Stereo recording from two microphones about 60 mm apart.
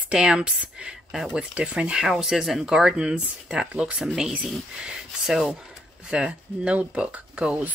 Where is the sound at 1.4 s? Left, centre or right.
Centre.